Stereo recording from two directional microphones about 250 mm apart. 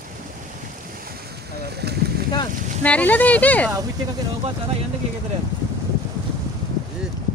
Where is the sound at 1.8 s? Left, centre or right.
Right.